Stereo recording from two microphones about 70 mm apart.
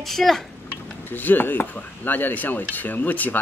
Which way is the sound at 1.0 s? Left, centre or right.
Left.